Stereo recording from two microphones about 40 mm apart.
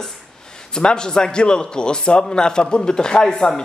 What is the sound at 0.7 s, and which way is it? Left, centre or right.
Speech, left.